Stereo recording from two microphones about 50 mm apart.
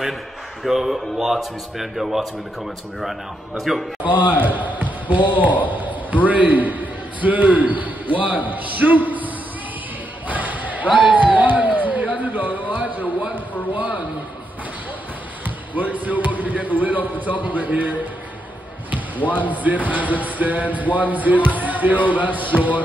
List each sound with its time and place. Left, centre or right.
0.7 s a man's voice: centre
4.2 s a man's voice: right
8.5 s a sound: right
13.3 s speech: right
15.4 s speech: right
19.3 s speech: right